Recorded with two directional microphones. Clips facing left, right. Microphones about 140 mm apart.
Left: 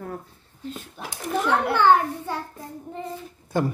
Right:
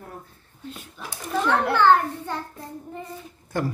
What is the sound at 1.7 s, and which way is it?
Speech, 10° left (ahead or behind).